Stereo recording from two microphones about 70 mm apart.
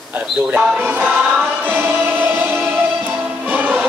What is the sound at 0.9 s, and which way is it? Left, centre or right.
Choir, right.